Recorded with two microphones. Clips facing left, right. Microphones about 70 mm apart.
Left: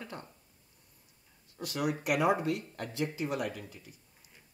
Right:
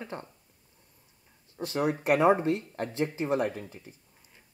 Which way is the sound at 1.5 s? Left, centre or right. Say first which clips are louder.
Right 5 dB; right.